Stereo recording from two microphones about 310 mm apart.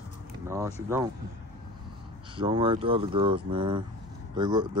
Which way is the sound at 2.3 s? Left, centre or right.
Centre.